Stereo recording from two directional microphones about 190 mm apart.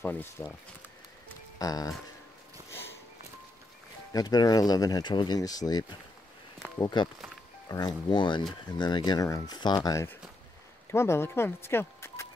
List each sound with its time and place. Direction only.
0.0 s speech: 10° left (ahead or behind)
1.6 s speech: 20° left (ahead or behind)
2.7 s music: 10° left (ahead or behind)
4.1 s speech: 20° left (ahead or behind)